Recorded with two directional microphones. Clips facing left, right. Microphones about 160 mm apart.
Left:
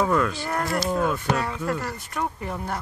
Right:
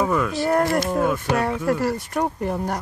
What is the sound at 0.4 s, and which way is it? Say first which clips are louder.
Speech: right 9 dB; 35° right (ahead or behind).